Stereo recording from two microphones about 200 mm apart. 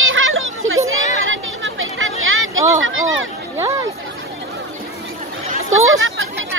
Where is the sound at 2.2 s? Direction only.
85° right.